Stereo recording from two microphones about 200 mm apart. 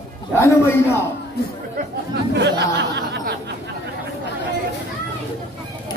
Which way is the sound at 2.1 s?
60° right (ahead or behind).